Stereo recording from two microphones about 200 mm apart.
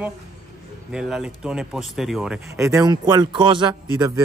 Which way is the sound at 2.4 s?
15° right (ahead or behind).